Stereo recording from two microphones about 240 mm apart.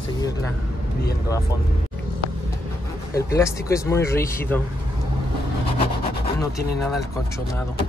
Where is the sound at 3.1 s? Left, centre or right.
Centre.